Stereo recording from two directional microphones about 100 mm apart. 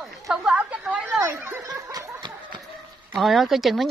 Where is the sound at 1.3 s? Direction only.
30° right (ahead or behind).